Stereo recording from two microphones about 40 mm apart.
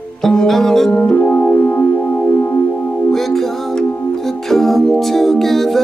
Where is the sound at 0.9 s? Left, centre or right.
Left.